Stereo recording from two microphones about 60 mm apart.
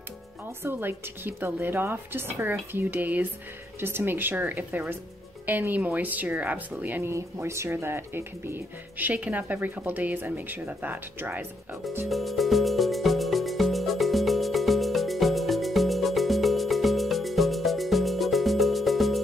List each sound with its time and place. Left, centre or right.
0.7 s a woman's voice: right
7.4 s speech: right
12.1 s music: centre